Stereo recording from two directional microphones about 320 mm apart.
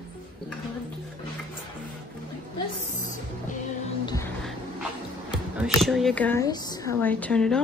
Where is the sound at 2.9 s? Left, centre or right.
Left.